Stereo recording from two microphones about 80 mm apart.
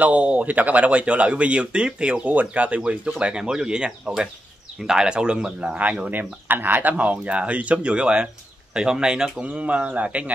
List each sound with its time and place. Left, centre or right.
0.0 s speech: centre